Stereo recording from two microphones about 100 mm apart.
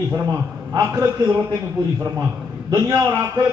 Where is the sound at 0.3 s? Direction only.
35° right (ahead or behind).